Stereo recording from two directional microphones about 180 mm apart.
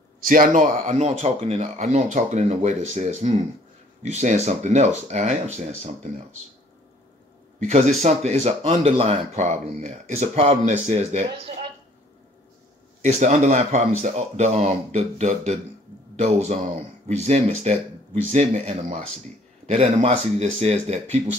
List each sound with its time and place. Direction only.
0.2 s speech: 50° right (ahead or behind)
7.6 s speech: 40° right (ahead or behind)
13.0 s speech: 40° right (ahead or behind)